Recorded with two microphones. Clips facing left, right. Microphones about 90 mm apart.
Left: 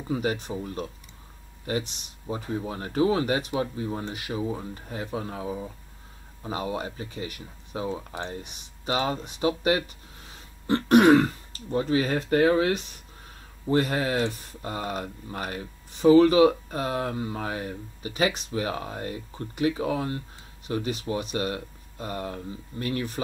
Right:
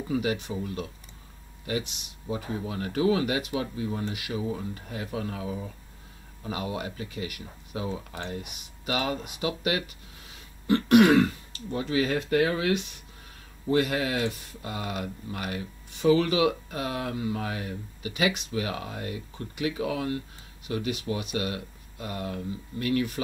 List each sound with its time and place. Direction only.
0.1 s speech: 40° left (ahead or behind)